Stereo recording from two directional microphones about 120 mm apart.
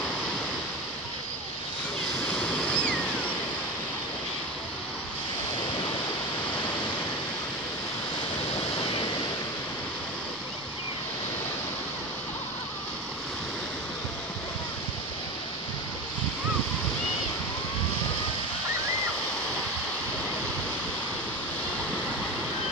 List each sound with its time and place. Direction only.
2.3 s waves: 10° left (ahead or behind)
8.7 s waves: 50° left (ahead or behind)